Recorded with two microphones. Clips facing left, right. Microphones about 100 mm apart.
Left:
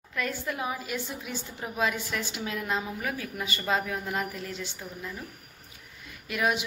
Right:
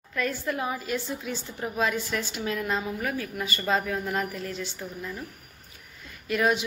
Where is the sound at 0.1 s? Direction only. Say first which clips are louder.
Right 3 dB; 10° left (ahead or behind).